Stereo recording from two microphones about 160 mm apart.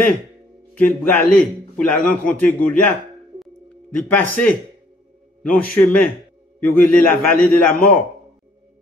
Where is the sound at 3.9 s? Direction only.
10° left (ahead or behind).